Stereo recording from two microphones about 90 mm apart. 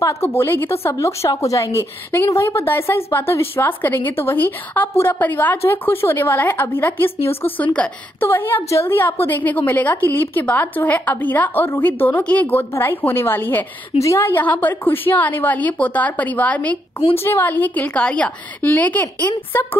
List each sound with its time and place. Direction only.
0.0 s a woman's voice: 30° left (ahead or behind)